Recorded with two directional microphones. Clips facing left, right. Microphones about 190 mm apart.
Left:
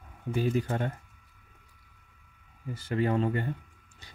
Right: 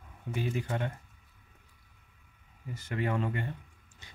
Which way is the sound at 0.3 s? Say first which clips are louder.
Left 5 dB; 40° left (ahead or behind).